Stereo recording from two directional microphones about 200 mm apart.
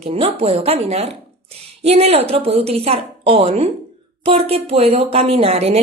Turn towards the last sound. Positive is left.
turn(degrees=-30)  # may be behind; listen again after turning